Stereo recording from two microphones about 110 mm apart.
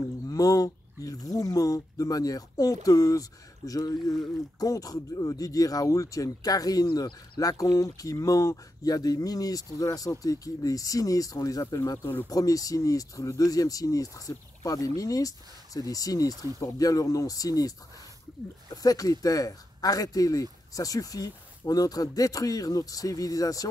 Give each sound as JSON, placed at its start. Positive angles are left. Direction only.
{"t": 0.3, "sound": "speech", "side_deg": 30}